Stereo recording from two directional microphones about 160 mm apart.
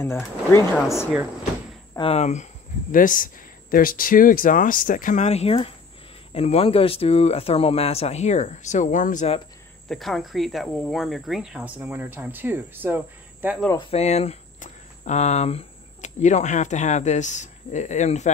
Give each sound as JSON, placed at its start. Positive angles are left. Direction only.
{"t": 0.0, "sound": "speech", "side_deg": 15}
{"t": 2.0, "sound": "speech", "side_deg": 40}
{"t": 9.8, "sound": "speech", "side_deg": 0}
{"t": 13.7, "sound": "speech", "side_deg": 35}